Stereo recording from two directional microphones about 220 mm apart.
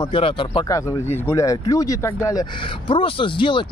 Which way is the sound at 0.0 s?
25° left (ahead or behind).